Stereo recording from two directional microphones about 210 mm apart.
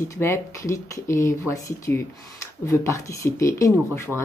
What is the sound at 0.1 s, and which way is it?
Speech, 15° left (ahead or behind).